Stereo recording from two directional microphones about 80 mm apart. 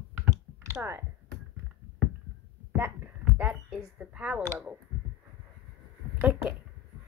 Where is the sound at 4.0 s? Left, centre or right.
Centre.